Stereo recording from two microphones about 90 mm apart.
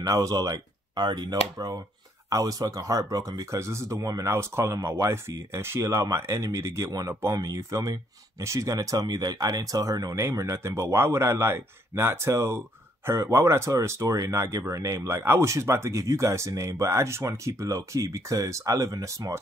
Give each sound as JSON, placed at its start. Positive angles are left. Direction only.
{"t": 0.0, "sound": "speech", "side_deg": -35}
{"t": 14.4, "sound": "speech", "side_deg": -30}